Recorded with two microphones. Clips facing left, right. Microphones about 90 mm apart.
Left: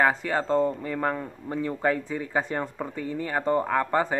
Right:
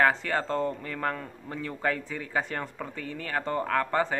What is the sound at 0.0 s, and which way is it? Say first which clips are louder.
Speech: left 1 dB; 15° left (ahead or behind).